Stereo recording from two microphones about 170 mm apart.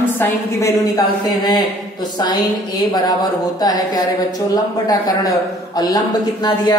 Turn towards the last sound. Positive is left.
turn(degrees=20)  # may be behind; listen again after turning